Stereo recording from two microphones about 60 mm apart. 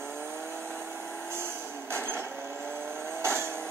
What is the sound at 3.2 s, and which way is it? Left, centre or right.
Vehicle, right.